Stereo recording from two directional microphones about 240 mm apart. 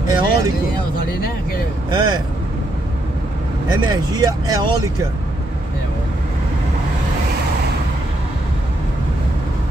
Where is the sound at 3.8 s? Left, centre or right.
Centre.